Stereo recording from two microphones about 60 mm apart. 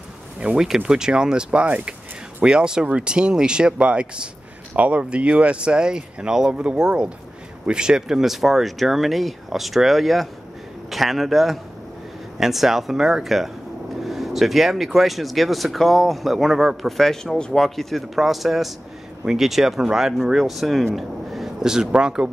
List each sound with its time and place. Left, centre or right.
0.4 s speech: centre